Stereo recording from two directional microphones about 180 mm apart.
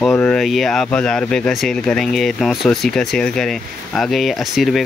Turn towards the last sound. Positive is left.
turn(degrees=0)  # may be behind; listen again after turning